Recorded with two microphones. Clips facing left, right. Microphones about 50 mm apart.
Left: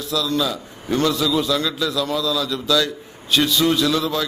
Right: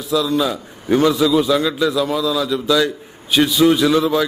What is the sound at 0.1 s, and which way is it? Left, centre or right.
A man's voice, centre.